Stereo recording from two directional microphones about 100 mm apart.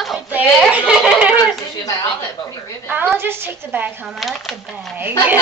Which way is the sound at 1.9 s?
35° left (ahead or behind).